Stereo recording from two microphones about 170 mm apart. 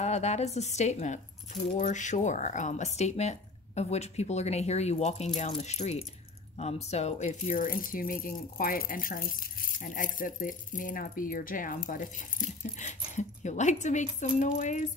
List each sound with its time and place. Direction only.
0.0 s speech: 40° left (ahead or behind)